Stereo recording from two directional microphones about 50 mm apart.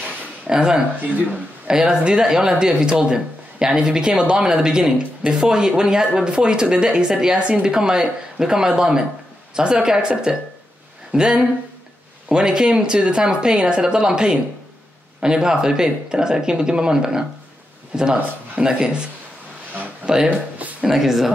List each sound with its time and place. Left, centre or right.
0.5 s speech: centre
20.1 s speech: centre
20.8 s speech: centre